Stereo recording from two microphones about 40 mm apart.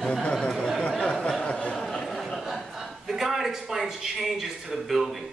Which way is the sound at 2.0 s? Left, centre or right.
Centre.